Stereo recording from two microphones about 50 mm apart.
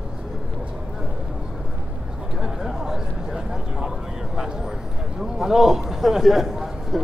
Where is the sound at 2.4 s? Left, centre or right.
Centre.